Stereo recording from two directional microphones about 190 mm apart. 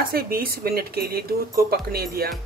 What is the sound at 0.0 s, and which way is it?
Speech, 50° right (ahead or behind).